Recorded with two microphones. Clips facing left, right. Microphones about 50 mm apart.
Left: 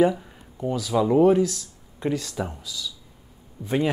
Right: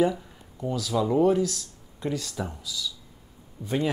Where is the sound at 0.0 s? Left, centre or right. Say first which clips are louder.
Left 4 dB; centre.